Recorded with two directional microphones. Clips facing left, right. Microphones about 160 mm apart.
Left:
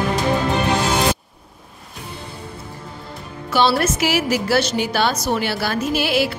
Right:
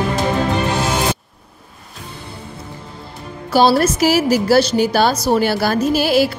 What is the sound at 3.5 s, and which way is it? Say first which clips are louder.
A woman's voice: right 4 dB; 40° right (ahead or behind).